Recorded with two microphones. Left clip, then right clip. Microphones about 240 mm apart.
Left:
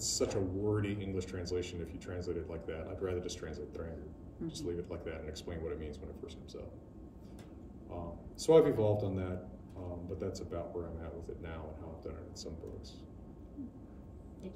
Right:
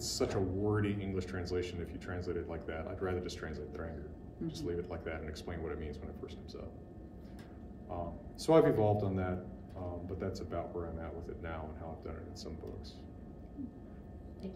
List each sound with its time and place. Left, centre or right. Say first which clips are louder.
0.0 s speech: even; centre
7.9 s speech: right 4 dB; centre